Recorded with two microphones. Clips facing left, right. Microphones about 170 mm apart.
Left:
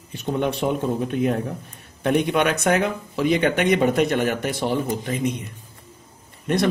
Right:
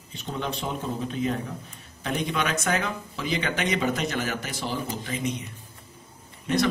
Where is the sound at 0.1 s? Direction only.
65° left (ahead or behind).